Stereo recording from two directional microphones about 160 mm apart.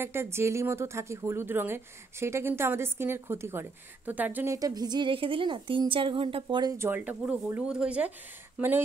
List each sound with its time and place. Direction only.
0.0 s a woman's voice: 15° right (ahead or behind)
4.6 s a woman's voice: 25° right (ahead or behind)